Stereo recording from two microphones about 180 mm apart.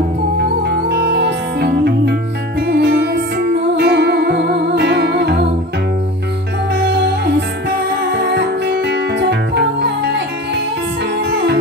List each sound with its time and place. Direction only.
0.7 s music: 65° right (ahead or behind)
6.8 s music: 70° right (ahead or behind)
11.2 s music: 70° right (ahead or behind)